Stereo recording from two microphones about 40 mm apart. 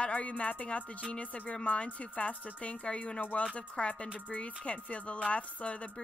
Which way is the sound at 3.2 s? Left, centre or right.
Left.